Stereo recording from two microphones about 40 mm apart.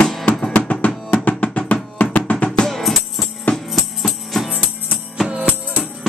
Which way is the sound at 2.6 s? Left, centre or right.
Centre.